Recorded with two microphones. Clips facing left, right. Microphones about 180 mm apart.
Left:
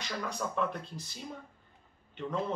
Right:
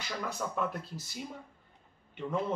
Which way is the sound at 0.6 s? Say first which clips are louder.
Left 1 dB; 5° right (ahead or behind).